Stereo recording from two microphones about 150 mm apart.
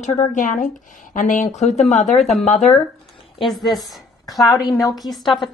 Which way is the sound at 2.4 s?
50° left (ahead or behind).